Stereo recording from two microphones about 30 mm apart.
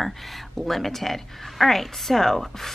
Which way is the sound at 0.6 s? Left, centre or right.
Centre.